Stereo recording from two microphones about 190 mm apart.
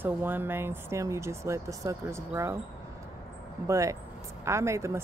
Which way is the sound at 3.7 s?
15° right (ahead or behind).